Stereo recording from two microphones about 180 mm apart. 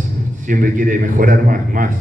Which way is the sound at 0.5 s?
50° right (ahead or behind).